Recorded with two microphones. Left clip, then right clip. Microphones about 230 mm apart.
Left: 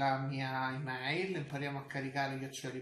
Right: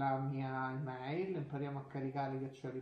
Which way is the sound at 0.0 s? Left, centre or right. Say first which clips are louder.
Left 3 dB; left.